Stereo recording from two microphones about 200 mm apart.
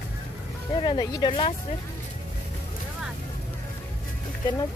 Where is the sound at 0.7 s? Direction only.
25° left (ahead or behind).